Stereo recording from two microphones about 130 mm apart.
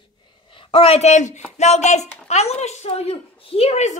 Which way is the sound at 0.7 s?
50° left (ahead or behind).